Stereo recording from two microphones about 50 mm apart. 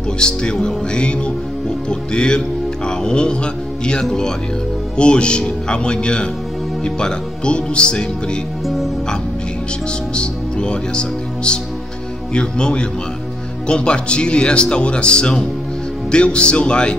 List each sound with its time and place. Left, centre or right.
0.2 s speech: centre
10.1 s speech: centre